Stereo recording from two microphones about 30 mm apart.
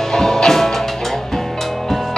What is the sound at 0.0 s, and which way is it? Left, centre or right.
Music, centre.